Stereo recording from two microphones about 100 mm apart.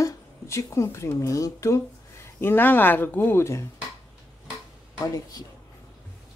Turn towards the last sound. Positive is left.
turn(degrees=40)  # may be behind; listen again after turning